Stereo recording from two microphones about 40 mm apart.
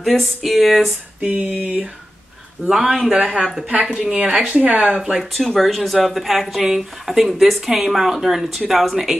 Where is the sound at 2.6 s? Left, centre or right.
Centre.